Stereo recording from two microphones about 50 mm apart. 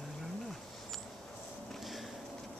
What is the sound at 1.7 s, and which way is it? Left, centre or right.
Walk, centre.